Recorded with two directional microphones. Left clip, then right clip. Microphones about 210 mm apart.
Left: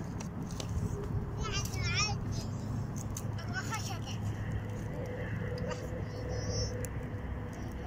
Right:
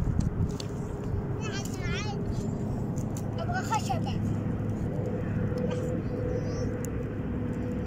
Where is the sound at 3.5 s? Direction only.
45° right (ahead or behind).